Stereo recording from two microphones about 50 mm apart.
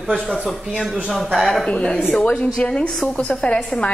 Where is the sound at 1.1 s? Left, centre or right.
Centre.